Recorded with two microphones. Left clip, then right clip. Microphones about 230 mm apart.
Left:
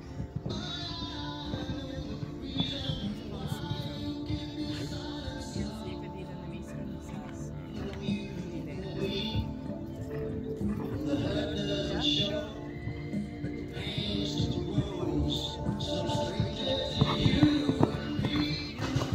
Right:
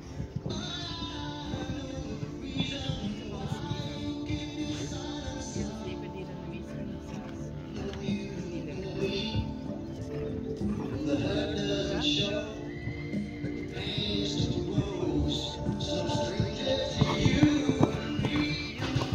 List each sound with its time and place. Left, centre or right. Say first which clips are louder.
2.5 s music: left 1 dB; left
4.3 s music: right 2 dB; left
9.0 s music: right 2 dB; left
11.1 s music: right 2 dB; left
13.8 s music: right 2 dB; left